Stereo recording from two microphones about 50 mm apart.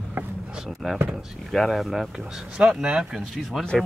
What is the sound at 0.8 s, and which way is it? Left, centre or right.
Speech, centre.